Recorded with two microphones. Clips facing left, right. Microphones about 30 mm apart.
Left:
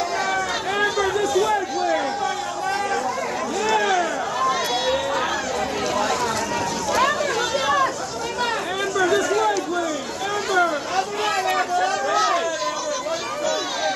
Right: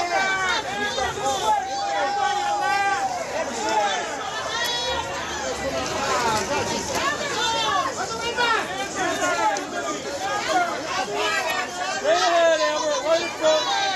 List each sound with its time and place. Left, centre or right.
0.8 s chatter: centre
9.2 s run: centre
11.2 s a sound: centre